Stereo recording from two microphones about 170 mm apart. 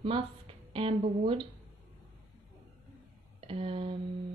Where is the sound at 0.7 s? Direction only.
30° right (ahead or behind).